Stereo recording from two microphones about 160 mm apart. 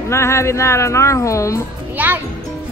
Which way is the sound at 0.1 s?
15° left (ahead or behind).